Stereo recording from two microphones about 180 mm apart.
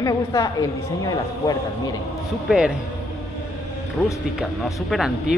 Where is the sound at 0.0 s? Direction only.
20° left (ahead or behind).